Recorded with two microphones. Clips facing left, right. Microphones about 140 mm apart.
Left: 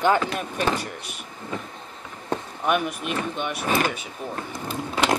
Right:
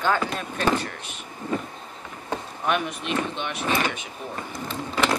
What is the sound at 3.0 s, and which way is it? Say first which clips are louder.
Speech: even; 50° left (ahead or behind).